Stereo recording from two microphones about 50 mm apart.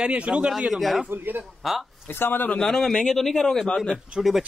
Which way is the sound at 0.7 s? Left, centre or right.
Centre.